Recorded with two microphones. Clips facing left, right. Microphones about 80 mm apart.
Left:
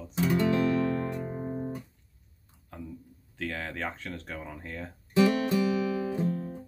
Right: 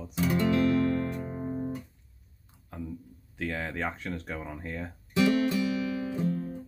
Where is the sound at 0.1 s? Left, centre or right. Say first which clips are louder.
Even; left.